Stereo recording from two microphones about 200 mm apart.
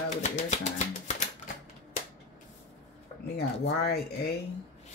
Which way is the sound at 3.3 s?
50° left (ahead or behind).